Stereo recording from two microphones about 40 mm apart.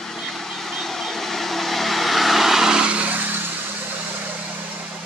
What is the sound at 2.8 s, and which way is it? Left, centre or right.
Vehicle, right.